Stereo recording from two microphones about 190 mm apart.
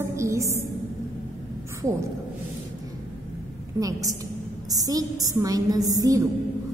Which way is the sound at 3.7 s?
15° right (ahead or behind).